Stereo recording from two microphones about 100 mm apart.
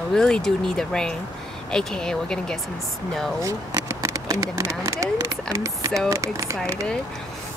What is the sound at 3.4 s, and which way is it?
Speech, 35° right (ahead or behind).